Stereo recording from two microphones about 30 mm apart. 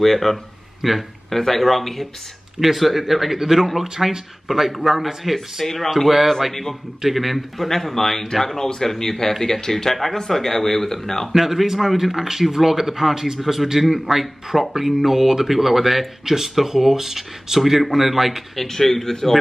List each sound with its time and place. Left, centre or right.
0.0 s speech: centre
0.8 s a man's voice: centre
1.3 s speech: centre
3.3 s a man's voice: centre
4.5 s speech: centre
8.5 s speech: centre
11.3 s a man's voice: centre
17.6 s speech: centre
18.6 s speech: centre